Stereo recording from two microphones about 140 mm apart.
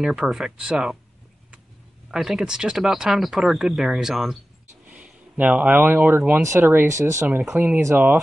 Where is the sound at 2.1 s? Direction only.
Centre (ahead or behind); by 8.1 s 20° right (ahead or behind).